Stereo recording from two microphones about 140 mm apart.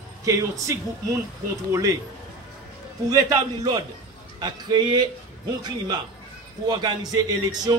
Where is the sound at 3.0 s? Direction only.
25° right (ahead or behind).